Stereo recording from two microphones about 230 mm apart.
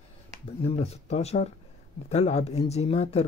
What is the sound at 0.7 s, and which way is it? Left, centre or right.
Speech, left.